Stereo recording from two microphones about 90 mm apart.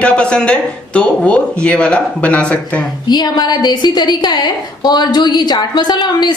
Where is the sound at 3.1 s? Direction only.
50° left (ahead or behind).